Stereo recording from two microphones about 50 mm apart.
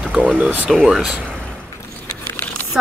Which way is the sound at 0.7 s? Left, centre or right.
Centre.